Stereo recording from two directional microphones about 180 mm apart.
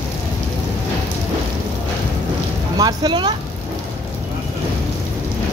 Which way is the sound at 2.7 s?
25° right (ahead or behind).